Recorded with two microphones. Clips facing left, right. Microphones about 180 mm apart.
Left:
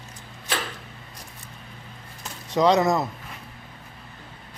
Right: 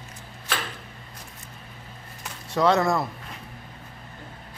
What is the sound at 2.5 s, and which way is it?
Speech, 15° left (ahead or behind).